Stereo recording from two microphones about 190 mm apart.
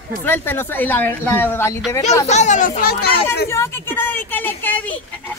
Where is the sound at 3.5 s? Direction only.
10° left (ahead or behind).